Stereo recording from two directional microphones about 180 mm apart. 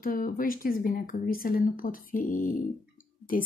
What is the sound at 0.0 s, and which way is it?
Speech, 50° left (ahead or behind).